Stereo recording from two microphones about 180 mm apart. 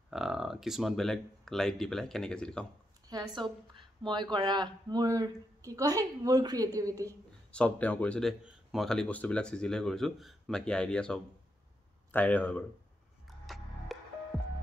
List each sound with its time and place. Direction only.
0.1 s speech: centre (ahead or behind)
3.1 s a woman's voice: 20° right (ahead or behind)
7.5 s speech: 5° left (ahead or behind)
13.5 s music: centre (ahead or behind)